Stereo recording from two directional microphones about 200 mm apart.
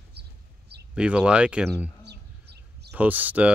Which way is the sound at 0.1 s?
55° right (ahead or behind).